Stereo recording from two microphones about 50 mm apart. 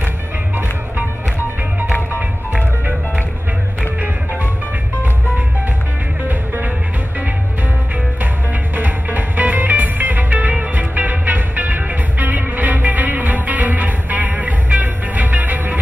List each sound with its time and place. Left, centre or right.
4.0 s music: right
8.7 s music: right